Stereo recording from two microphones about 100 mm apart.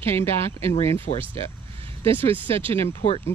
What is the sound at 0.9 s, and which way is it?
Speech, 65° right (ahead or behind).